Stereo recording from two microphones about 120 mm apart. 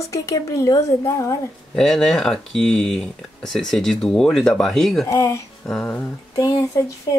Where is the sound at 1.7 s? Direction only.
5° left (ahead or behind).